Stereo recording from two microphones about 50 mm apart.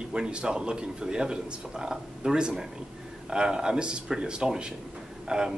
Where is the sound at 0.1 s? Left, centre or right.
Centre.